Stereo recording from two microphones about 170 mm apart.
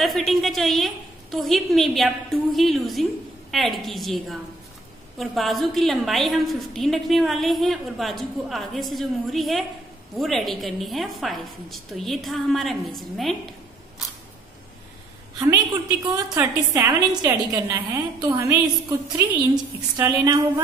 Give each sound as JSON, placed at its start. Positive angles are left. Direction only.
{"t": 0.0, "sound": "a woman's voice", "side_deg": 0}
{"t": 15.3, "sound": "a woman's voice", "side_deg": -20}